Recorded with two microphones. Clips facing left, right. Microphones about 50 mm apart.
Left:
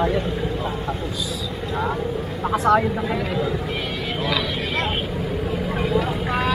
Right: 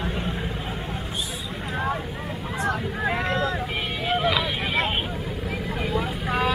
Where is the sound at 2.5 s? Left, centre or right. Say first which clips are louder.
Left 10 dB; left.